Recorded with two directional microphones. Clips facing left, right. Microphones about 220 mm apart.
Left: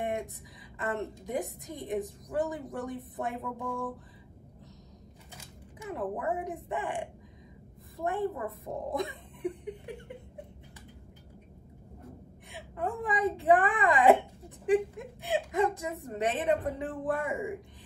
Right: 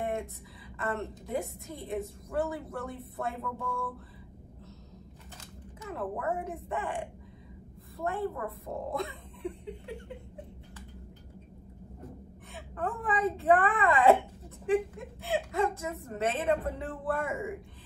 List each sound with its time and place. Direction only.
0.0 s a sound: 15° left (ahead or behind)
0.7 s a woman's voice: 15° left (ahead or behind)
5.4 s a woman's voice: 15° left (ahead or behind)
12.5 s a woman's voice: 15° left (ahead or behind)